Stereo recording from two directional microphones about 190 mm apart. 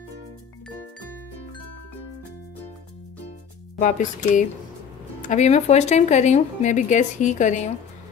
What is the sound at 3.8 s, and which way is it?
Speech, 40° left (ahead or behind).